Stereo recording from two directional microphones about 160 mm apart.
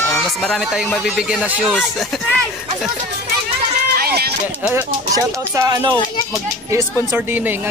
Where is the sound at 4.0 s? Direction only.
85° right.